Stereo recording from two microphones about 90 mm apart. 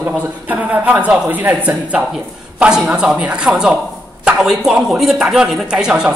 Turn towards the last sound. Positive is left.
turn(degrees=-10)  # may be behind; listen again after turning